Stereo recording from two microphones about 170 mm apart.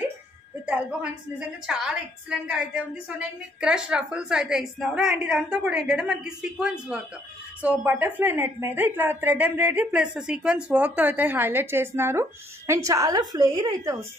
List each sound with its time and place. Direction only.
1.7 s a woman's voice: 5° right (ahead or behind); by 13.9 s 20° right (ahead or behind)